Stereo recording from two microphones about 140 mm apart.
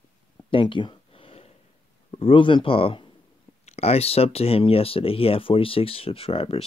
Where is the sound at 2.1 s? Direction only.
40° left (ahead or behind).